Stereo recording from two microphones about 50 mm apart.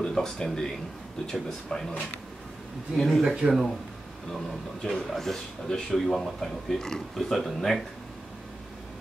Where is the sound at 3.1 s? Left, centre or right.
Centre.